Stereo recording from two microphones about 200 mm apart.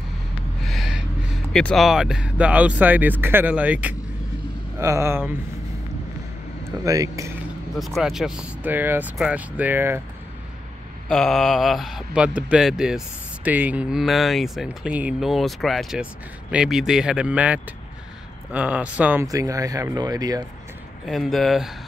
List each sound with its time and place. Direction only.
0.7 s gasp: centre (ahead or behind)
1.5 s speech: 5° left (ahead or behind); by 5.3 s 10° right (ahead or behind)
6.8 s speech: 15° right (ahead or behind)
7.7 s speech: centre (ahead or behind)
11.1 s speech: centre (ahead or behind); by 20.4 s 20° right (ahead or behind)
21.0 s speech: centre (ahead or behind)